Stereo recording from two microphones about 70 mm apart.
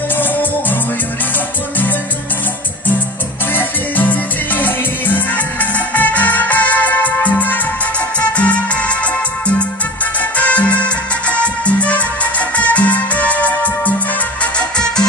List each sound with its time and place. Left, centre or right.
0.2 s music: left
3.5 s music: left
10.3 s music: centre
14.4 s music: centre